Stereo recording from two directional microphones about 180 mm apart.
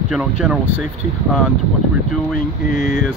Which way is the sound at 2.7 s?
45° left (ahead or behind).